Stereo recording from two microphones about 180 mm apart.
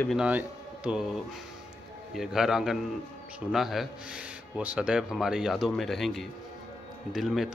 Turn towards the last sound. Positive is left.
turn(degrees=0)  # may be behind; listen again after turning